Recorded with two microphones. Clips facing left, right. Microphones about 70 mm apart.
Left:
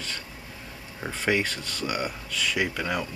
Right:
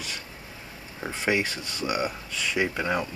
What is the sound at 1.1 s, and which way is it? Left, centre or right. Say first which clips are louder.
Speech: even; centre.